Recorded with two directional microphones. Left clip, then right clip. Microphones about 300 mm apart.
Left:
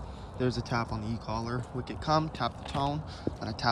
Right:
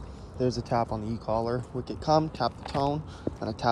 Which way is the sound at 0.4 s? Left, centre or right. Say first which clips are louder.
Right 4 dB; centre.